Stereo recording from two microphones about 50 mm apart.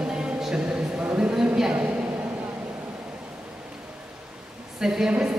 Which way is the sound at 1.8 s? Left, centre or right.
Right.